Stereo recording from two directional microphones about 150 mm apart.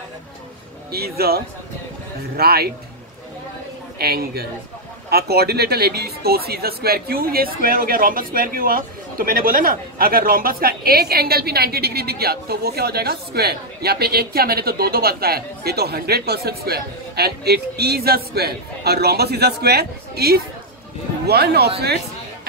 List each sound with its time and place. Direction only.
0.9 s speech: 90° right
4.0 s a man's voice: 90° right